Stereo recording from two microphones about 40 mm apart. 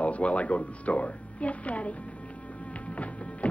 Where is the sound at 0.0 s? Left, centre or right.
Left.